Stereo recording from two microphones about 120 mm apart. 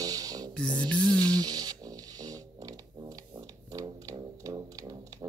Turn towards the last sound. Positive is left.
turn(degrees=-30)  # may be behind; listen again after turning